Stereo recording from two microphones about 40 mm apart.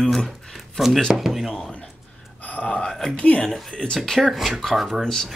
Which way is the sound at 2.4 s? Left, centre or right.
Left.